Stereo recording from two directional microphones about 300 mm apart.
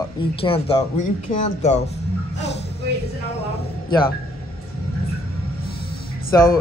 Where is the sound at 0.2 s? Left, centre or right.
Centre.